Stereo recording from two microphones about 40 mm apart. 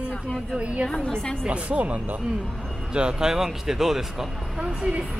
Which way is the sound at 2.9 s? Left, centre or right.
Centre.